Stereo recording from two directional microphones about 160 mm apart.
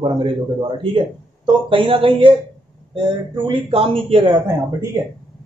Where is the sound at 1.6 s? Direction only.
35° right (ahead or behind).